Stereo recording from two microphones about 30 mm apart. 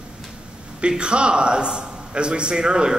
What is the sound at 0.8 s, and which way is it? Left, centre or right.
A man's voice, right.